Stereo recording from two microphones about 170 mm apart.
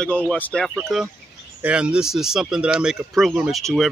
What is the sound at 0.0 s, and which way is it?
Speech, 5° left (ahead or behind).